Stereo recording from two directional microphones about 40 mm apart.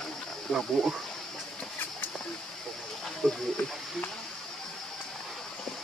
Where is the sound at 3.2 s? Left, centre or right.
Centre.